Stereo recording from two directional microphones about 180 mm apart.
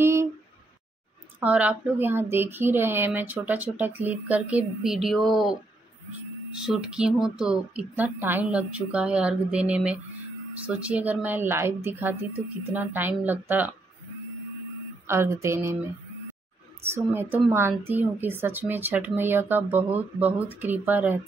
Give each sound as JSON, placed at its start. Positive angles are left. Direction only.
{"t": 0.0, "sound": "a sound", "side_deg": -15}
{"t": 1.4, "sound": "speech", "side_deg": -10}
{"t": 6.6, "sound": "speech", "side_deg": -5}
{"t": 15.0, "sound": "speech", "side_deg": -15}
{"t": 16.8, "sound": "speech", "side_deg": -15}